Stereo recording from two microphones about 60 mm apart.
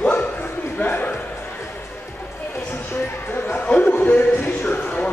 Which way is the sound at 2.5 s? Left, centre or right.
Left.